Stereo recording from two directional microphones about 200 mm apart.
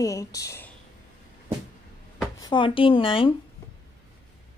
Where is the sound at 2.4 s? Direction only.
25° left (ahead or behind).